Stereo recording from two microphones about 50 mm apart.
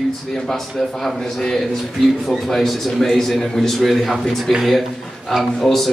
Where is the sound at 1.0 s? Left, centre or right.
Centre.